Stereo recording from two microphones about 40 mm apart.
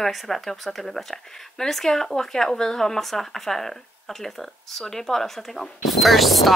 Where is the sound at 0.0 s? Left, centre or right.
Centre.